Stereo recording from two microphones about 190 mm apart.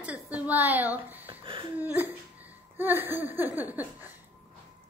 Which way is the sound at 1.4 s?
25° right (ahead or behind).